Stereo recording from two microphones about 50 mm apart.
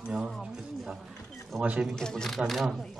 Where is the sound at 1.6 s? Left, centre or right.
Right.